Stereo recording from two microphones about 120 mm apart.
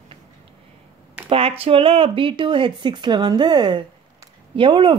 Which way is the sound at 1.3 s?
50° right (ahead or behind).